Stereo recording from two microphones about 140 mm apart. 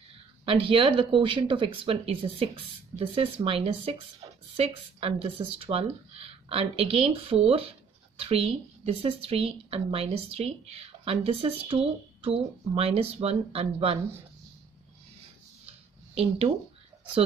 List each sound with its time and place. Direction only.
0.5 s a woman's voice: 40° right (ahead or behind)